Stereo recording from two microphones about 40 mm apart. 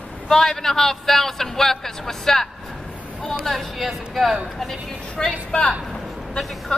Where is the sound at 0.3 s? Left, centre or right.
Centre.